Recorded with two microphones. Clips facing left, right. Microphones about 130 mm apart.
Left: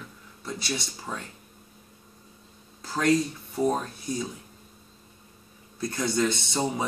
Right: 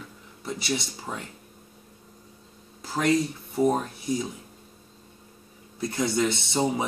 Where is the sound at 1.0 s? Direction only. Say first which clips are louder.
Right 1 dB; 10° right (ahead or behind).